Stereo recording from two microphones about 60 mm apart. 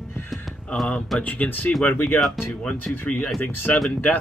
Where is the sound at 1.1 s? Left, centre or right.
Left.